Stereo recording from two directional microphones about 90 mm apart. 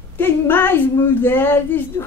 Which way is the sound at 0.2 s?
25° left (ahead or behind).